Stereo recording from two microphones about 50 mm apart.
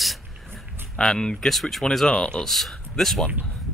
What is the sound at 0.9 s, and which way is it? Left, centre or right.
Speech, centre.